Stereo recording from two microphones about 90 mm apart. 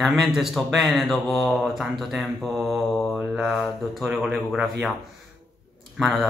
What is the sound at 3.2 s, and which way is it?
Speech, 10° right (ahead or behind).